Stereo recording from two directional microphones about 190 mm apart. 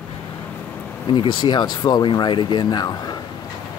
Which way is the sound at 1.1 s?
25° left (ahead or behind).